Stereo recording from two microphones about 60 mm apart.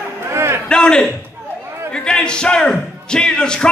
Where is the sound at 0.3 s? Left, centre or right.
Right.